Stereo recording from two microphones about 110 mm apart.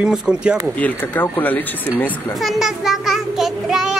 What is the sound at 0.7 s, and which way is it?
Speech, 15° left (ahead or behind).